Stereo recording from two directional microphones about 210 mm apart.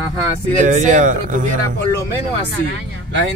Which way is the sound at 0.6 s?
35° right (ahead or behind).